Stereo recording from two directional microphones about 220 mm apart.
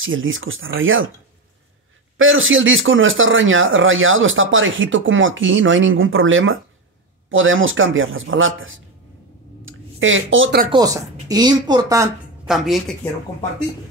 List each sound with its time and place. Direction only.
0.0 s speech: 65° right (ahead or behind)
2.1 s speech: 65° right (ahead or behind)
9.7 s a sound: 60° right (ahead or behind)
10.7 s speech: 15° right (ahead or behind)
12.4 s a woman's voice: centre (ahead or behind)